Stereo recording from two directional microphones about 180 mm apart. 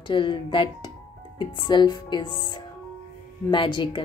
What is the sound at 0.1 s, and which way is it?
A woman's voice, 25° left (ahead or behind).